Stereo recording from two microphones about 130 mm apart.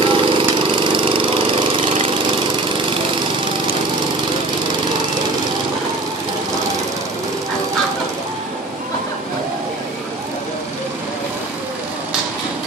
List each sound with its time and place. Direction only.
0.0 s lawn mower: 40° right (ahead or behind)